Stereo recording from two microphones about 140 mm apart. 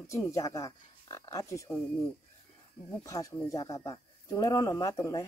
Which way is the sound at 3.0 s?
25° left (ahead or behind).